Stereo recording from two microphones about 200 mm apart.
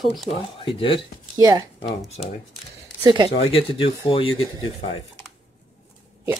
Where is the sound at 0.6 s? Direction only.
25° left (ahead or behind).